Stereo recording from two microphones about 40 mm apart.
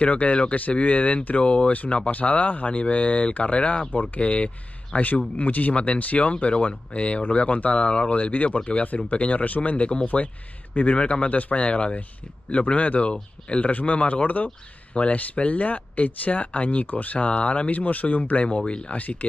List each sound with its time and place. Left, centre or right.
0.0 s speech: left
3.9 s speech: left
4.2 s speech: left
4.9 s speech: left
10.0 s speech: left
13.1 s speech: left
13.7 s speech: left